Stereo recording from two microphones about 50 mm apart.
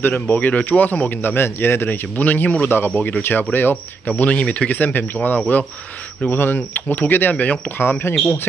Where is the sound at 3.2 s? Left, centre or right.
Left.